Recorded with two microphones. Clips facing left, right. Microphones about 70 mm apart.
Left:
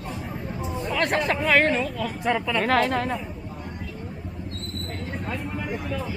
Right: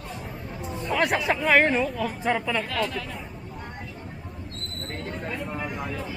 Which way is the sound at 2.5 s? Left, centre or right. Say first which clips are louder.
Left 6 dB; left.